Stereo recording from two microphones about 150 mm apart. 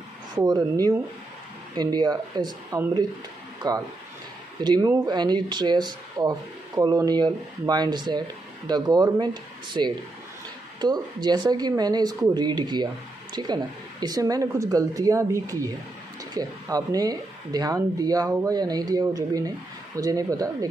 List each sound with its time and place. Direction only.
0.4 s speech: 25° right (ahead or behind)